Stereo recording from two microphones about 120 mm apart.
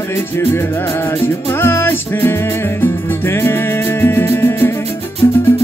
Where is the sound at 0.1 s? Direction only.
20° left (ahead or behind).